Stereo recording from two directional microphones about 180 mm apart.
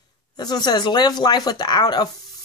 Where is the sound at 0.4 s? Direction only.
20° left (ahead or behind).